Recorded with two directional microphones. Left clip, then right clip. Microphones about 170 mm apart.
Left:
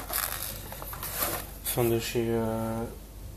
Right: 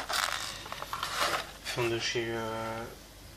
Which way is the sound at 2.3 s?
15° left (ahead or behind).